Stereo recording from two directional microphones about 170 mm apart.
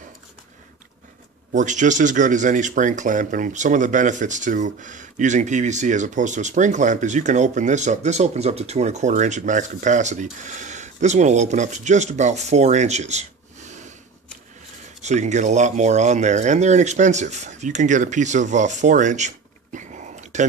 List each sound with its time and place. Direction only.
1.5 s speech: 45° right (ahead or behind)
15.0 s speech: 45° right (ahead or behind)